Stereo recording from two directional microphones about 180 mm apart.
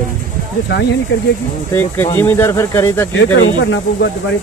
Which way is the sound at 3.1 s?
80° left.